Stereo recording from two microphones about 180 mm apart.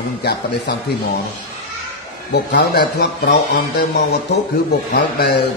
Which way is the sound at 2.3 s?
65° left (ahead or behind).